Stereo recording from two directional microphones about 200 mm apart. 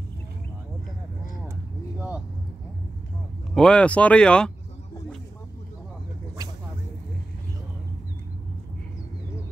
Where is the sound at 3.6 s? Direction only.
5° left (ahead or behind).